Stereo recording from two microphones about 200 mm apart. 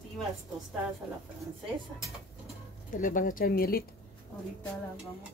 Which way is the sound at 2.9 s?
40° left (ahead or behind).